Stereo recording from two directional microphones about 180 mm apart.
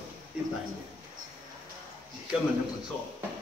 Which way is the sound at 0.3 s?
5° right (ahead or behind).